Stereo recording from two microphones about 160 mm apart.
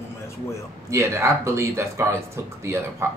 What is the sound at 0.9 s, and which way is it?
Speech, 20° right (ahead or behind).